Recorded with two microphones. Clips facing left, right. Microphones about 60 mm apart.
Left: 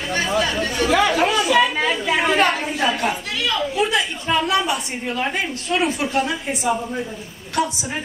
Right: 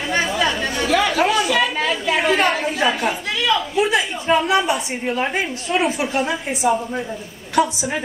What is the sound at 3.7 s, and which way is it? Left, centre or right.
Speech, right.